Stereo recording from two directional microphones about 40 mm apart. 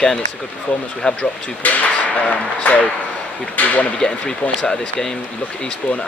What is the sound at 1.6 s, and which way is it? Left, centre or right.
Speech, left.